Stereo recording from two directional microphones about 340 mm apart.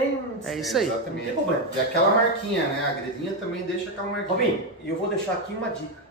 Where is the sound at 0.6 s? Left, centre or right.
Centre.